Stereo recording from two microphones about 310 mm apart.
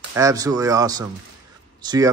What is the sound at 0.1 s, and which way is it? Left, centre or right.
Speech, centre.